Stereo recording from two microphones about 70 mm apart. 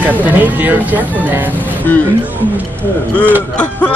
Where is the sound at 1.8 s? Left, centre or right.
Left.